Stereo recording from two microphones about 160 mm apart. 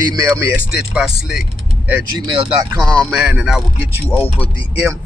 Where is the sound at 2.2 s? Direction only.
25° right (ahead or behind).